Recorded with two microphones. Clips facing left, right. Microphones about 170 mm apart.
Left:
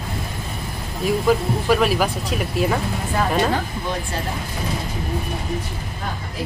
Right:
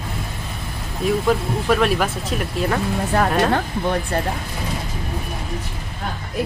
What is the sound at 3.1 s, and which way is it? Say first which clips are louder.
Speech: right 3 dB; 65° right (ahead or behind).